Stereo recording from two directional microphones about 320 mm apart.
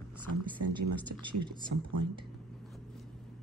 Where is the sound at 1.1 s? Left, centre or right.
Right.